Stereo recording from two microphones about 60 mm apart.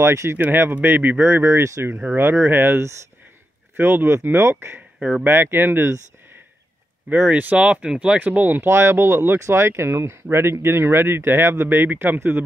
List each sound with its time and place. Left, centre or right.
0.0 s speech: right
0.4 s speech: right
1.3 s speech: right
5.0 s speech: right
7.1 s speech: right
8.2 s speech: right
8.5 s speech: right